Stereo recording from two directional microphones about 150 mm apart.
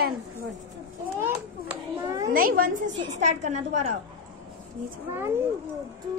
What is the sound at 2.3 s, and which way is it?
Speech, 70° right (ahead or behind).